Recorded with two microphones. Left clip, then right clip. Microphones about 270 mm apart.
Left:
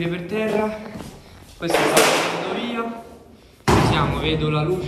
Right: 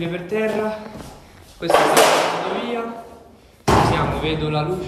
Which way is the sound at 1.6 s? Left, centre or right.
Centre.